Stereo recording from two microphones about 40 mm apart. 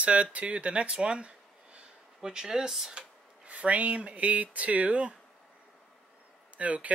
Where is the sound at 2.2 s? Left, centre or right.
Centre.